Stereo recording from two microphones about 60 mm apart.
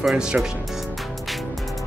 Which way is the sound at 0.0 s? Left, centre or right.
Centre.